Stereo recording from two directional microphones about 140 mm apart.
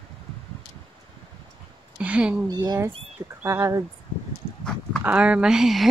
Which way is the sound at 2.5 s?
30° right (ahead or behind).